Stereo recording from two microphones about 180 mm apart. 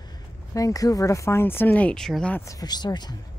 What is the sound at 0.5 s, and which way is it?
Speech, 20° left (ahead or behind).